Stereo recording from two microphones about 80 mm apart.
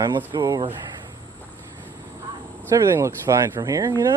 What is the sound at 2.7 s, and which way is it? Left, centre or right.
Speech, right.